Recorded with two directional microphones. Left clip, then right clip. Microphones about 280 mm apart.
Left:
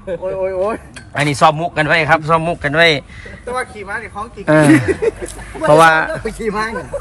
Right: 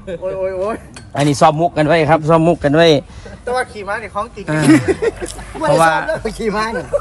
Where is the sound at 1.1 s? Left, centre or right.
Centre.